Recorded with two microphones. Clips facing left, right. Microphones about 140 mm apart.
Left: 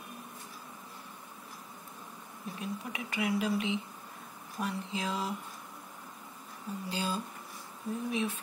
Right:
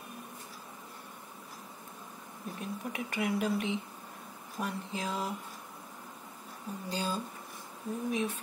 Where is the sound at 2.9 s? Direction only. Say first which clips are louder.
Even; 45° right (ahead or behind).